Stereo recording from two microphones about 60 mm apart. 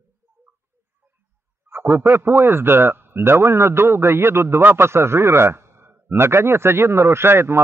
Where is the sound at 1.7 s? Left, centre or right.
Right.